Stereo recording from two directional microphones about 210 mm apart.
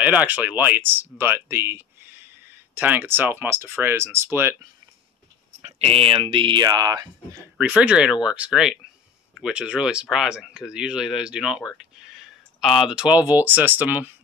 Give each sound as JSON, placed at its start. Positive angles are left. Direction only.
{"t": 0.0, "sound": "speech", "side_deg": -5}
{"t": 5.6, "sound": "speech", "side_deg": -30}
{"t": 7.5, "sound": "speech", "side_deg": -5}